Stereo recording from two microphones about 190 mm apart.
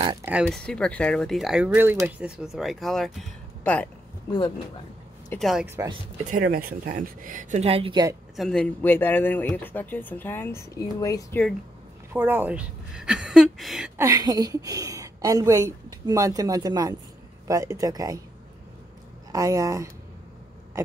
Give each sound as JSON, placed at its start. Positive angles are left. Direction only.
{"t": 0.2, "sound": "speech", "side_deg": -5}
{"t": 0.5, "sound": "speech", "side_deg": 5}
{"t": 5.4, "sound": "speech", "side_deg": 0}
{"t": 6.2, "sound": "speech", "side_deg": -45}
{"t": 8.4, "sound": "speech", "side_deg": 5}
{"t": 12.1, "sound": "speech", "side_deg": -10}
{"t": 13.9, "sound": "a woman's voice", "side_deg": -20}
{"t": 19.3, "sound": "speech", "side_deg": -15}